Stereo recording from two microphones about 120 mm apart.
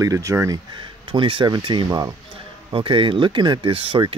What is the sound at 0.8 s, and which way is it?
Speech, 45° right (ahead or behind).